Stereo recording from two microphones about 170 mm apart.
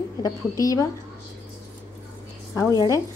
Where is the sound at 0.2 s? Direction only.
20° left (ahead or behind).